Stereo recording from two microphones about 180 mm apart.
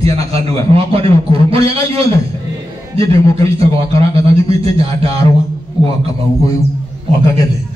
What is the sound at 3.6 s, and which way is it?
Speech, 30° right (ahead or behind).